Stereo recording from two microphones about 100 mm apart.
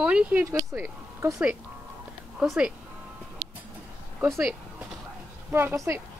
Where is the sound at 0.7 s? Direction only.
25° right (ahead or behind).